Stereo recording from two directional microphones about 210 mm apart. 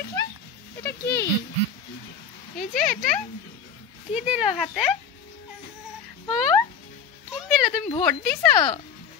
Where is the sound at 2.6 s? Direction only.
40° left (ahead or behind).